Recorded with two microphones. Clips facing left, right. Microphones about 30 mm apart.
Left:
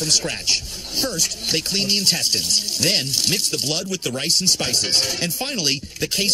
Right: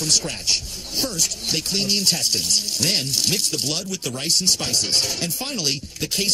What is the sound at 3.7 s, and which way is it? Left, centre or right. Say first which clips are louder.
Speech: left 3 dB; left.